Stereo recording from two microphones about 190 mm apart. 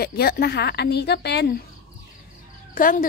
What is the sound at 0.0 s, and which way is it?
A woman's voice, 55° left (ahead or behind).